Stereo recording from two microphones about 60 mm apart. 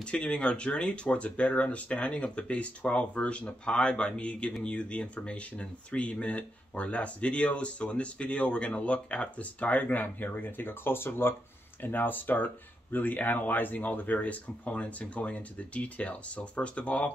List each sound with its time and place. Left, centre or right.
0.0 s speech: centre